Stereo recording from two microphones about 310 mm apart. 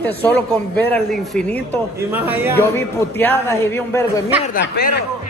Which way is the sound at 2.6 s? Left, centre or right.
Centre.